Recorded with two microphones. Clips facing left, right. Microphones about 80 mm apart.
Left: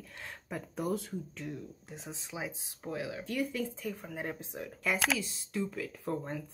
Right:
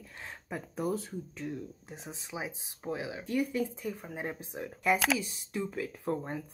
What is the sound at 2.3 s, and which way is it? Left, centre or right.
Speech, centre.